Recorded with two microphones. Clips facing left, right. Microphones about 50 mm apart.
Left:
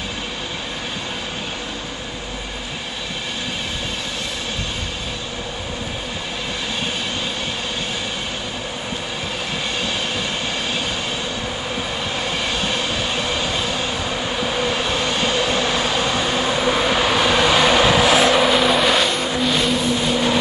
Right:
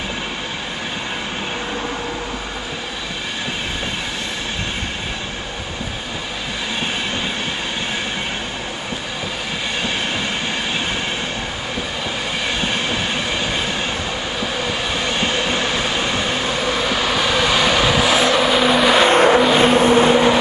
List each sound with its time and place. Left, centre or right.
12.5 s train: centre
14.4 s train: centre; by 15.7 s right
15.7 s train: centre
16.3 s train: centre
19.0 s vehicle: right
19.4 s vehicle: right
19.7 s vehicle: right